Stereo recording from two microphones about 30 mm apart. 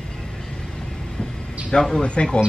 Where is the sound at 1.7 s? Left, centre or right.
Left.